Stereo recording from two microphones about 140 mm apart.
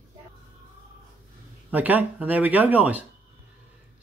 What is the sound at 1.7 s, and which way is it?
Speech, 10° right (ahead or behind).